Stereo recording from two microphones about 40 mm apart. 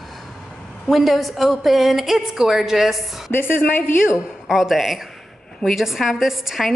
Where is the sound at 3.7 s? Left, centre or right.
Left.